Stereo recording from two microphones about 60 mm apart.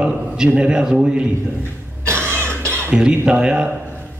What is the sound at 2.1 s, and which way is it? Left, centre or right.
Cough, right.